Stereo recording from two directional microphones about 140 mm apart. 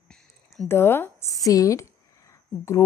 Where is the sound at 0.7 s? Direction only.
15° left (ahead or behind).